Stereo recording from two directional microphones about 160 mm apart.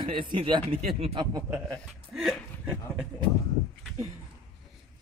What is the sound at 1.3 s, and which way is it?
Speech, 20° right (ahead or behind).